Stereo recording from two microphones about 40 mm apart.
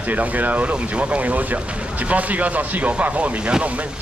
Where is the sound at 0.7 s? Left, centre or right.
Right.